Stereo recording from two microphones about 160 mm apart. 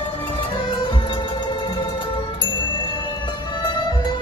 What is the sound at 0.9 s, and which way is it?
Music, 30° left (ahead or behind).